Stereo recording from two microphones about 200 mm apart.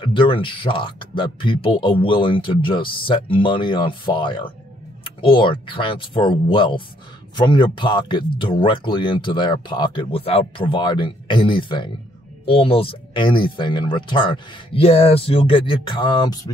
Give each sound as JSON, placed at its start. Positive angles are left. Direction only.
{"t": 0.0, "sound": "speech", "side_deg": 25}